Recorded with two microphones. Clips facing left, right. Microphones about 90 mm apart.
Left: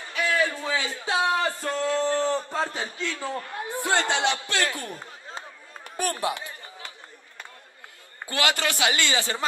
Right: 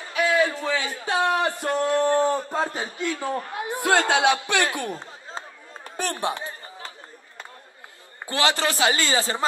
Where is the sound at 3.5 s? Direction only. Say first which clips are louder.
Right 4 dB; 80° right.